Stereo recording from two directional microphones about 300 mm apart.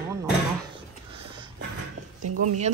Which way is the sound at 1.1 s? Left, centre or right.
Centre.